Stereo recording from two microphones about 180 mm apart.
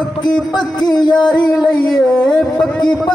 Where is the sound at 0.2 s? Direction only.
25° left (ahead or behind).